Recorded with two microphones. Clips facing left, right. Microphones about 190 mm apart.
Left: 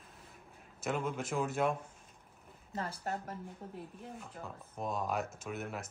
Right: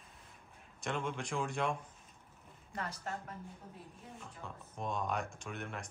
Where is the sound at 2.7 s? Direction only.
30° left (ahead or behind).